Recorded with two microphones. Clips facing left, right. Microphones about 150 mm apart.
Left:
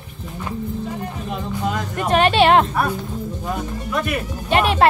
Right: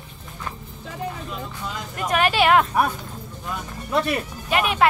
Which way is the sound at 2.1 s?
25° left (ahead or behind).